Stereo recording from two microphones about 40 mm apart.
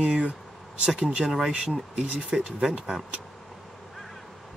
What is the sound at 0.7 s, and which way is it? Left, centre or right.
Speech, right.